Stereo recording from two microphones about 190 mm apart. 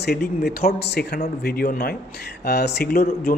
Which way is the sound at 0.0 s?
55° left (ahead or behind).